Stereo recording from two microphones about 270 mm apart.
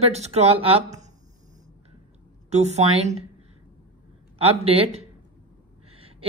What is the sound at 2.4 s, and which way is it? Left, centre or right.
Speech, right.